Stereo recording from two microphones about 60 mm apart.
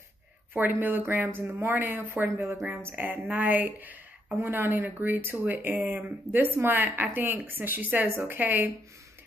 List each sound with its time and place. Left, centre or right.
0.5 s speech: right
2.2 s speech: right
4.4 s speech: right